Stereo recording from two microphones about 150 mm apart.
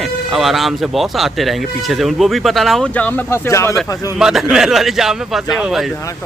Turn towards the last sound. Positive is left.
turn(degrees=0)  # may be behind; listen again after turning